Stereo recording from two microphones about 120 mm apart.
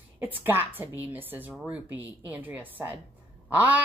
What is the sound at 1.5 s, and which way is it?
Speech, centre (ahead or behind).